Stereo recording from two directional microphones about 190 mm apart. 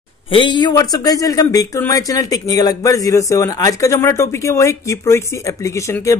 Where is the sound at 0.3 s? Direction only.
25° left (ahead or behind).